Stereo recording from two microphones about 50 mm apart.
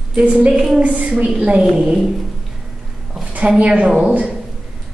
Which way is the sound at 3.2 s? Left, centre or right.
Right.